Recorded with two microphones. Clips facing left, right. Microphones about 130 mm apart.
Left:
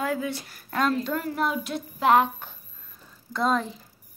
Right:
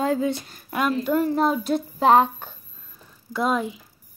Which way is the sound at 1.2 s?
35° right (ahead or behind).